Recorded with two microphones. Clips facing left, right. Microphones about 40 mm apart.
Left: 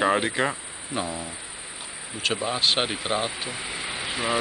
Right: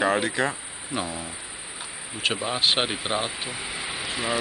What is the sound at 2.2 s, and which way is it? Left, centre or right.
Speech, centre.